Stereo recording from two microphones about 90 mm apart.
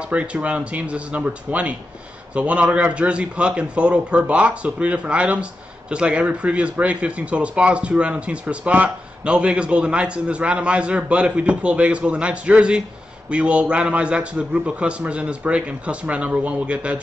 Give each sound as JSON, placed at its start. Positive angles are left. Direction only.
{"t": 0.0, "sound": "a man's voice", "side_deg": -10}